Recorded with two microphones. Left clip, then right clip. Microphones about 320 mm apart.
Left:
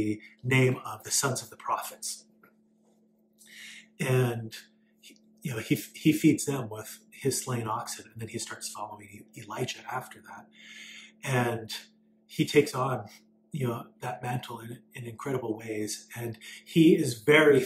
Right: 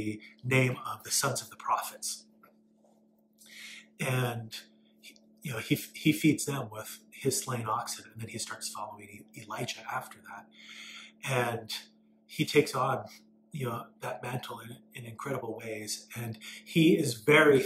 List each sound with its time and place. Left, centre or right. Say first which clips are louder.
0.0 s speech: left 6 dB; centre
3.4 s speech: left 1 dB; centre